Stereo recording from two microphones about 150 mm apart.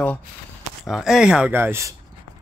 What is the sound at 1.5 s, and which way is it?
Speech, 15° right (ahead or behind).